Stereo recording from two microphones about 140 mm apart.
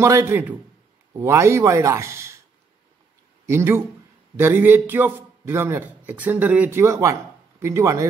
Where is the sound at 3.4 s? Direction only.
20° right (ahead or behind).